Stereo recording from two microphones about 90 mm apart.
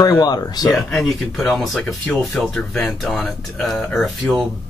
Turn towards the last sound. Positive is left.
turn(degrees=5)  # may be behind; listen again after turning